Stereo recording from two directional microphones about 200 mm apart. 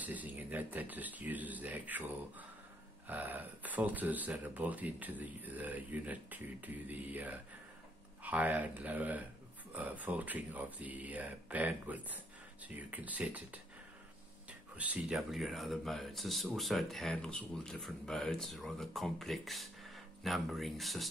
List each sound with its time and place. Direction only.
0.0 s speech: 10° right (ahead or behind)
14.8 s speech: 5° right (ahead or behind)